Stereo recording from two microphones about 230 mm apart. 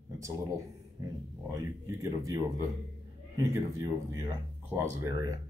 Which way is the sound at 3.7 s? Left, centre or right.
Centre.